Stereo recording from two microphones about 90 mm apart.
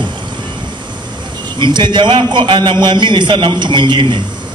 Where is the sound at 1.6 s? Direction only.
60° right (ahead or behind).